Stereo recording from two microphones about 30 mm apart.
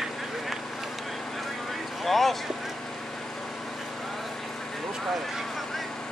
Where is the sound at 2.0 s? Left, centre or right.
Centre.